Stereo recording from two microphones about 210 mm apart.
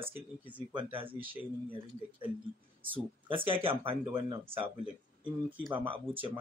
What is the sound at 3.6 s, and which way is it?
Speech, 25° right (ahead or behind).